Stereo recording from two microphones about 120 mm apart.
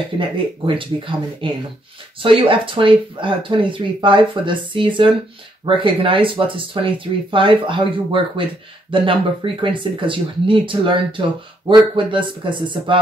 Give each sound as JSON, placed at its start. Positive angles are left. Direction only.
{"t": 0.7, "sound": "speech", "side_deg": -45}